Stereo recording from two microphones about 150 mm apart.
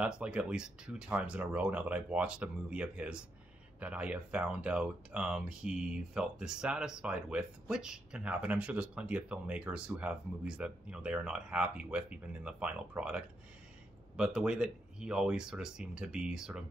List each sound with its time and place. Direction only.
0.0 s speech: 5° right (ahead or behind)